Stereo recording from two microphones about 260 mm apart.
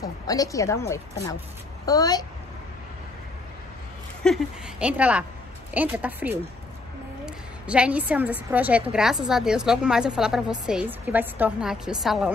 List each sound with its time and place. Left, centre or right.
0.0 s a woman's voice: centre
4.2 s a woman's voice: centre